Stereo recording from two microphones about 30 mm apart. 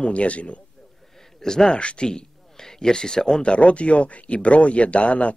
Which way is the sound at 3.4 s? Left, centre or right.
Left.